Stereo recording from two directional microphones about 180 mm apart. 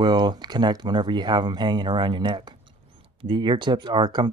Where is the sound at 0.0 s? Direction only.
25° right (ahead or behind).